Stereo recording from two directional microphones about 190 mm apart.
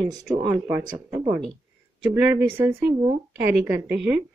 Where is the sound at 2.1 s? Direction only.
10° right (ahead or behind).